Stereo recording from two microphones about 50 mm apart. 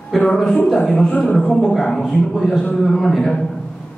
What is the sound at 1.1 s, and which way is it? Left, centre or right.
Speech, left.